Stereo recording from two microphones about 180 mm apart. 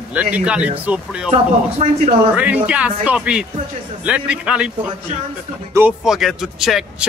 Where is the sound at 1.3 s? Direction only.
35° right (ahead or behind).